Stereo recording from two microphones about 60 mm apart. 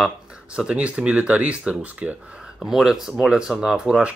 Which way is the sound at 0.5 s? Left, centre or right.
Centre.